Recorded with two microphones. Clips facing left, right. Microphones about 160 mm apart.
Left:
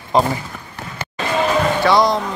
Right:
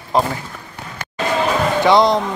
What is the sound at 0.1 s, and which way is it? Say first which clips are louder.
Speech: left 1 dB; centre (ahead or behind).